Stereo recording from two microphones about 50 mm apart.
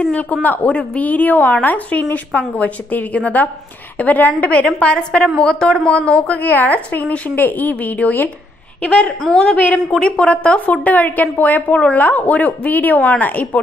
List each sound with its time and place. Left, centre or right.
0.1 s a woman's voice: left
8.8 s a woman's voice: left